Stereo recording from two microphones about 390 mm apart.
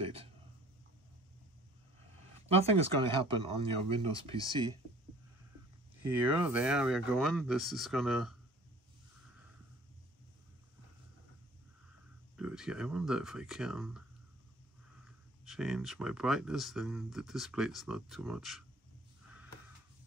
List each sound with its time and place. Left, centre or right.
0.0 s a sound: centre
2.4 s speech: centre
6.0 s speech: centre
12.4 s speech: centre
15.0 s speech: centre